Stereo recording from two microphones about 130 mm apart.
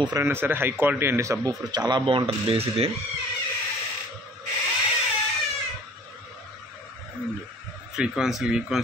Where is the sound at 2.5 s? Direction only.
50° right (ahead or behind).